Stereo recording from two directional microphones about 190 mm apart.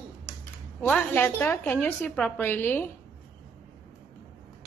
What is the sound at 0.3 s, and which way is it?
Speech, 5° left (ahead or behind).